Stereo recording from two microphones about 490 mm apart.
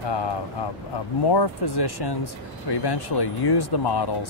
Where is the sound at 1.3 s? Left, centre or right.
Left.